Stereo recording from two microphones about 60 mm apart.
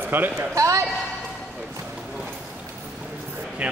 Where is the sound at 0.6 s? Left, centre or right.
Right.